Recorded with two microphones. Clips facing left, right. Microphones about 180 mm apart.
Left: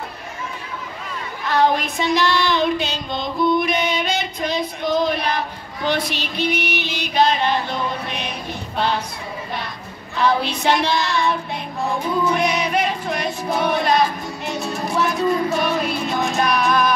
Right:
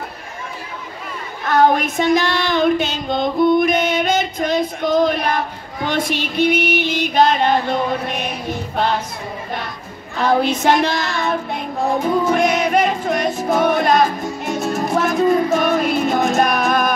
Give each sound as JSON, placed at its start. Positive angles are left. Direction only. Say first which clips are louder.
{"t": 1.4, "sound": "female singing", "louder": "right 4 dB", "side_deg": -50}
{"t": 5.9, "sound": "music", "louder": "right 2 dB", "side_deg": -50}
{"t": 10.1, "sound": "child singing", "louder": "right 3 dB", "side_deg": -50}
{"t": 13.5, "sound": "music", "louder": "right 3 dB", "side_deg": -50}